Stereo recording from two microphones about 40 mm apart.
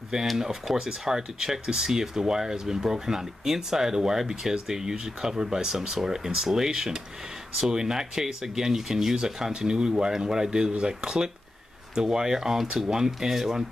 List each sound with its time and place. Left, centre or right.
0.4 s speech: centre